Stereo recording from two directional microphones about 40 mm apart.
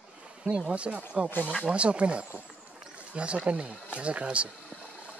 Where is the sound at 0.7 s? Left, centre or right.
Right.